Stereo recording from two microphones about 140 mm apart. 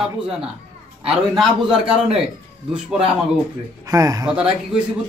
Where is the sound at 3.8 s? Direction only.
25° right (ahead or behind).